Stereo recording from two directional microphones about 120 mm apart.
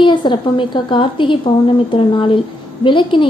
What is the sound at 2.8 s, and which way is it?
Speech, 45° left (ahead or behind).